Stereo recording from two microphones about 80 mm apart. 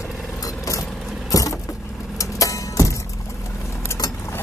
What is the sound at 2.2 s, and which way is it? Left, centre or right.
Music, left.